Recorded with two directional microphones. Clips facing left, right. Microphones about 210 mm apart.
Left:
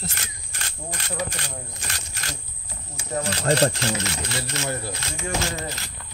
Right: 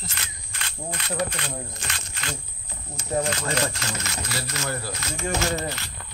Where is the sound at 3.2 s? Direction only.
35° left (ahead or behind).